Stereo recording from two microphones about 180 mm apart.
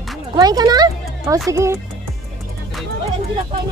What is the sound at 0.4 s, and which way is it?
Speech, 20° right (ahead or behind).